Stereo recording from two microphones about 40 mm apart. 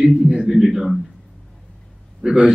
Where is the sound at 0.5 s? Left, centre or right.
Centre.